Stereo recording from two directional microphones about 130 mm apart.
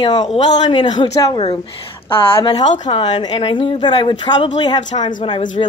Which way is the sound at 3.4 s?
45° left (ahead or behind).